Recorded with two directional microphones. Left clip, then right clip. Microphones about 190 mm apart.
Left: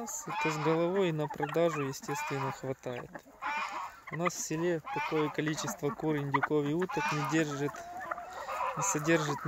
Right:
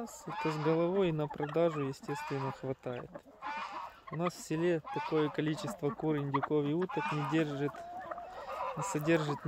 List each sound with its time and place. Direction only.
0.3 s speech: 35° left (ahead or behind)
0.7 s speech: centre (ahead or behind)
2.0 s speech: 35° left (ahead or behind)
2.6 s speech: centre (ahead or behind)
3.4 s chicken: 35° left (ahead or behind)
4.2 s speech: 10° right (ahead or behind); by 6.9 s 5° left (ahead or behind)
6.9 s speech: 40° left (ahead or behind)
7.3 s speech: 5° left (ahead or behind)